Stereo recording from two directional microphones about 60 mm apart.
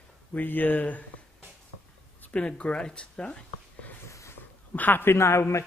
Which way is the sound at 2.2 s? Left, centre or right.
Left.